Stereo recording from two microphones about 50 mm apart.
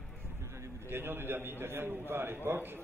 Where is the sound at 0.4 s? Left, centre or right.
Right.